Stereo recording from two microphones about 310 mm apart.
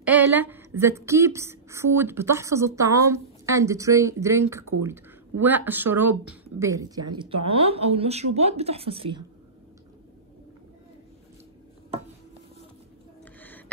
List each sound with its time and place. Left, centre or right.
0.0 s speech: centre